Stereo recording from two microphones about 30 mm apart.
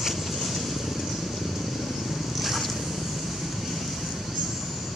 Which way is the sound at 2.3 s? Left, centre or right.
Centre.